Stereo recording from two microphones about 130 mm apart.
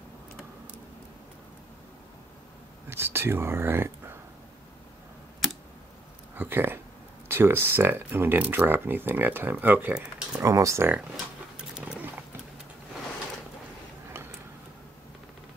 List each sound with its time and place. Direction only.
2.9 s speech: 20° right (ahead or behind)
6.3 s a sound: 15° right (ahead or behind)
7.2 s speech: 20° right (ahead or behind)
10.4 s speech: 25° right (ahead or behind)
11.5 s roaring cats: 5° right (ahead or behind)